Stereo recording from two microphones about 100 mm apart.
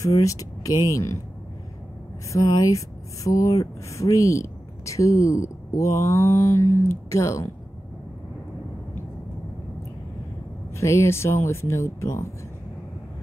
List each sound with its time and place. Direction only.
0.0 s speech: 35° left (ahead or behind)
2.3 s speech: 35° left (ahead or behind)
10.7 s speech: 30° left (ahead or behind)